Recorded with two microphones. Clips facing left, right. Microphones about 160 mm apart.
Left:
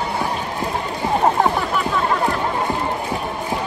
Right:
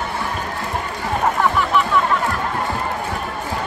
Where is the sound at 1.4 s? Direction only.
35° left (ahead or behind).